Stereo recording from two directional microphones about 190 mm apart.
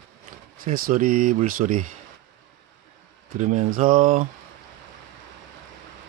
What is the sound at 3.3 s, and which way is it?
Speech, 40° right (ahead or behind).